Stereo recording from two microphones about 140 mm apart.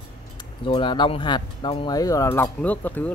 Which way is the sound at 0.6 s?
35° left (ahead or behind).